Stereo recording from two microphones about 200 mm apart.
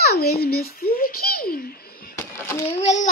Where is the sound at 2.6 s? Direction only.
35° left (ahead or behind).